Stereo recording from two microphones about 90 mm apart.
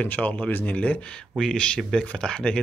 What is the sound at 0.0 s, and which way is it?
Speech, 15° left (ahead or behind).